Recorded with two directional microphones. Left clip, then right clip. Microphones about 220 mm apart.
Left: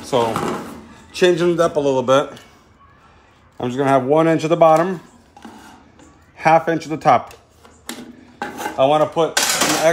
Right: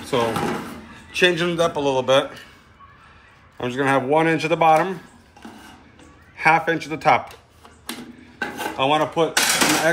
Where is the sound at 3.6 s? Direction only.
45° left (ahead or behind).